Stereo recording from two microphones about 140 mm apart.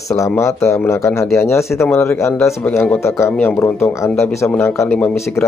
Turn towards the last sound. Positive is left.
turn(degrees=20)  # may be behind; listen again after turning